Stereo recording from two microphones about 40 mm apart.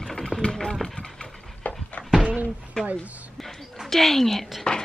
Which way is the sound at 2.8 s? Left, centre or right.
Left.